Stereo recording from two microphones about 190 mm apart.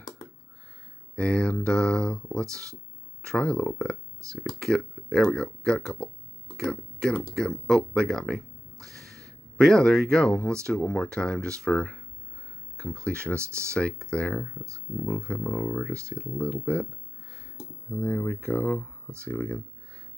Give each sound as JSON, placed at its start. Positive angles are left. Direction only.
{"t": 1.1, "sound": "speech", "side_deg": 5}
{"t": 4.2, "sound": "speech", "side_deg": -15}
{"t": 4.6, "sound": "speech", "side_deg": 0}
{"t": 9.0, "sound": "a sound", "side_deg": -55}
{"t": 9.6, "sound": "speech", "side_deg": 0}
{"t": 13.4, "sound": "speech", "side_deg": -15}
{"t": 13.7, "sound": "speech", "side_deg": 5}
{"t": 17.9, "sound": "speech", "side_deg": 5}